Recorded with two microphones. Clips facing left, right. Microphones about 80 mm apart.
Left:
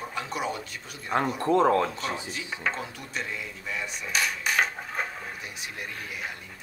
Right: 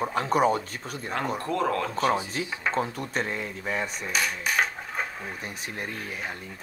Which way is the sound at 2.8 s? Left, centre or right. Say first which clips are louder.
Right 7 dB; right.